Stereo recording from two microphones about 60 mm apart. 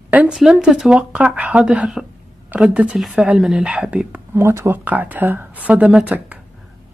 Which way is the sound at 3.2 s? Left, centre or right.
Centre.